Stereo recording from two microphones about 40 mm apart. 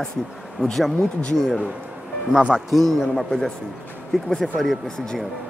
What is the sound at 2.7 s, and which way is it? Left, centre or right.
Speech, centre.